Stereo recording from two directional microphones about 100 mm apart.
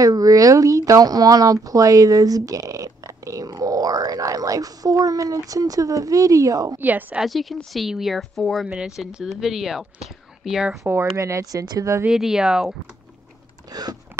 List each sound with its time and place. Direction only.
0.0 s speech: 35° right (ahead or behind)
6.8 s a woman's voice: 15° right (ahead or behind)
7.2 s speech: centre (ahead or behind)
10.8 s speech: 30° right (ahead or behind)
11.6 s a woman's voice: 45° right (ahead or behind)
12.1 s speech: 5° right (ahead or behind)
13.7 s a sound: 40° right (ahead or behind)